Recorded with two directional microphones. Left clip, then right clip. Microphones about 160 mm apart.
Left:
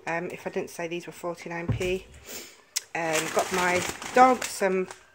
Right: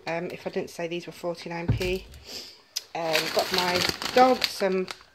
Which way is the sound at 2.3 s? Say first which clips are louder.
Even; 20° left (ahead or behind).